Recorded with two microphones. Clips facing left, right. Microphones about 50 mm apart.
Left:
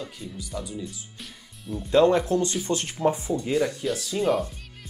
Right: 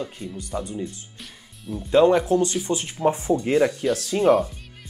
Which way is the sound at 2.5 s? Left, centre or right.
Centre.